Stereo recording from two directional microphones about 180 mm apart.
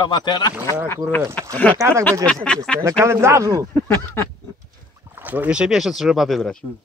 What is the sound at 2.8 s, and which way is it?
Speech, 15° right (ahead or behind).